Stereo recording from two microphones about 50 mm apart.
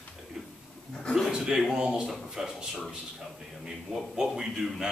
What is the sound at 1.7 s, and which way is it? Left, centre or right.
Speech, centre.